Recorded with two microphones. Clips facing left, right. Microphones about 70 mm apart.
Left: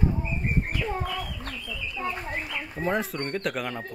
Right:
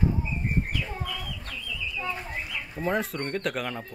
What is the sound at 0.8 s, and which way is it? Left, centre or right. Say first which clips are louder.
Speech: left 5 dB; left.